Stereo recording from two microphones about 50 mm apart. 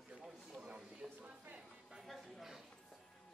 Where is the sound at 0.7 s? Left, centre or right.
Centre.